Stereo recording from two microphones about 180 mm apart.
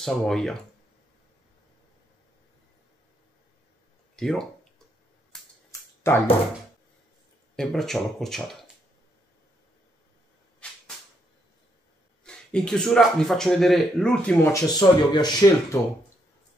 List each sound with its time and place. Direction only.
0.0 s speech: centre (ahead or behind)
4.2 s speech: centre (ahead or behind)
5.3 s a sound: centre (ahead or behind)
5.7 s a sound: 10° left (ahead or behind)
7.5 s speech: centre (ahead or behind)
12.3 s speech: 5° left (ahead or behind)
14.5 s speech: 20° left (ahead or behind)